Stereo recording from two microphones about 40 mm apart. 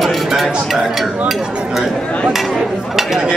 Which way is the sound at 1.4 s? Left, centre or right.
Right.